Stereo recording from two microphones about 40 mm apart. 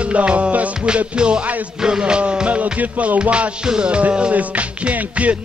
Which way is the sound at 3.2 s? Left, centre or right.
Right.